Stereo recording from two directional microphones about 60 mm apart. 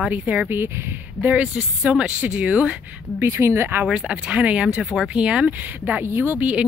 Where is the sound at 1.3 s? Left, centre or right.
Centre.